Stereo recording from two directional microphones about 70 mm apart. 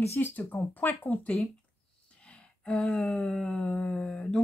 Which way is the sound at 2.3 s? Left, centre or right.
Centre.